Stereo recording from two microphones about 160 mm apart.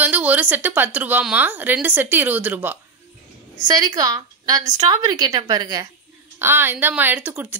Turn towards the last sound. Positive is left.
turn(degrees=-10)  # may be behind; listen again after turning